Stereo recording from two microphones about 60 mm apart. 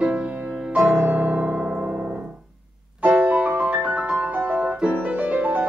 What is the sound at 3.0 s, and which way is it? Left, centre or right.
Music, right.